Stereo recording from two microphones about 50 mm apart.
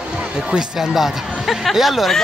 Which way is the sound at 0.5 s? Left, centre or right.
Centre.